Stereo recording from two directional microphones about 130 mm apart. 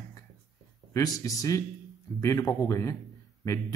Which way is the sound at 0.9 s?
25° left (ahead or behind).